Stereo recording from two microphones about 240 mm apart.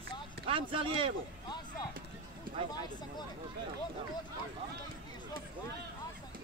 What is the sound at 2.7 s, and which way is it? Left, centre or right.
Speech, centre.